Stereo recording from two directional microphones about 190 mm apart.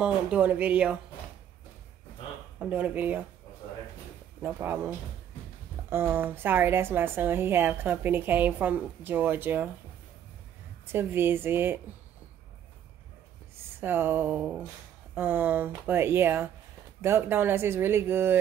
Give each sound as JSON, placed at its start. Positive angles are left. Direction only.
{"t": 0.0, "sound": "a woman's voice", "side_deg": -5}
{"t": 2.6, "sound": "a woman's voice", "side_deg": -10}
{"t": 4.4, "sound": "a woman's voice", "side_deg": -10}
{"t": 10.9, "sound": "a woman's voice", "side_deg": -10}
{"t": 13.7, "sound": "a woman's voice", "side_deg": -10}